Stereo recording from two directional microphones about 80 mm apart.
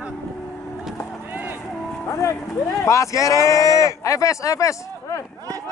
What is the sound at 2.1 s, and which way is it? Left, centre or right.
Speech, left.